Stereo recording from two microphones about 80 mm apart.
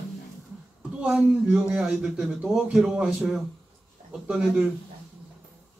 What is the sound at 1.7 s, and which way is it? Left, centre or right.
Speech, centre.